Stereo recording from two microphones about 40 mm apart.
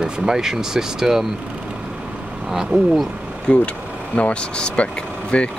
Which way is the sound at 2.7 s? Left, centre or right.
Right.